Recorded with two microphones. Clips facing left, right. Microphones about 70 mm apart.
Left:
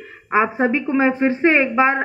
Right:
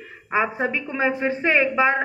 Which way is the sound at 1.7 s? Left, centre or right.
Centre.